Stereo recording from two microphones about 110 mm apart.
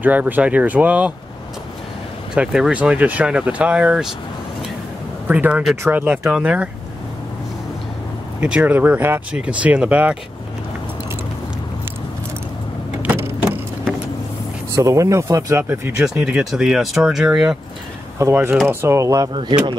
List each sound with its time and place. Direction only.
0.0 s speech: 15° right (ahead or behind)
2.3 s speech: 10° right (ahead or behind)
5.3 s speech: 15° right (ahead or behind)
8.4 s speech: 10° right (ahead or behind)
13.0 s vehicle: 15° right (ahead or behind)
14.7 s speech: 30° right (ahead or behind)
16.0 s speech: 5° right (ahead or behind); by 19.3 s 30° right (ahead or behind)
19.3 s speech: 50° right (ahead or behind)